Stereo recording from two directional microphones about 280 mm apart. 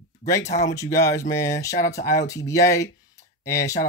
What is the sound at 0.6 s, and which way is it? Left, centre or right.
Speech, centre.